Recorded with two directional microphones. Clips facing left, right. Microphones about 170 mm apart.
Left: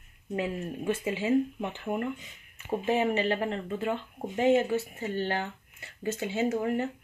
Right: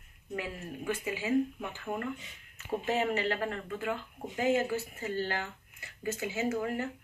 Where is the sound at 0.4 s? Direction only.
25° left (ahead or behind).